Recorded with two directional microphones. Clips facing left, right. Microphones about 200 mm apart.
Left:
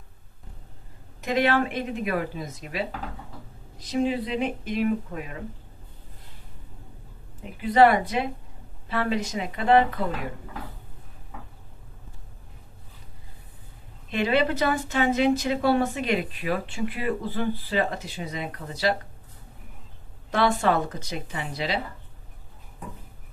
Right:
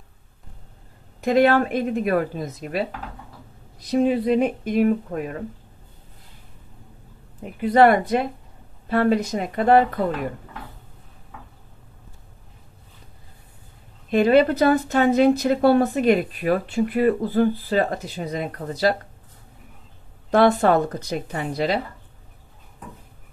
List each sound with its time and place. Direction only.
1.2 s a woman's voice: 50° right (ahead or behind)
3.9 s a woman's voice: 55° right (ahead or behind)
7.6 s a woman's voice: 50° right (ahead or behind)
14.1 s a woman's voice: 45° right (ahead or behind)
20.2 s a woman's voice: 55° right (ahead or behind)